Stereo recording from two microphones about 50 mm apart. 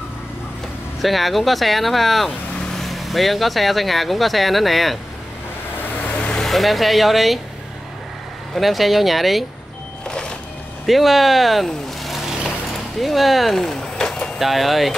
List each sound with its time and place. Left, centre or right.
1.0 s speech: centre
5.8 s vehicle: left
6.3 s speech: centre
8.5 s speech: centre
10.0 s music: centre
10.9 s speech: centre
14.4 s speech: centre